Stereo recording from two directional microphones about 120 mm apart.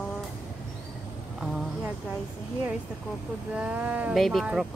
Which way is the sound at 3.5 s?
10° right (ahead or behind).